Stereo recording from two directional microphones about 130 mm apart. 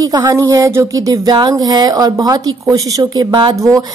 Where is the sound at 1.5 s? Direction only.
30° right (ahead or behind).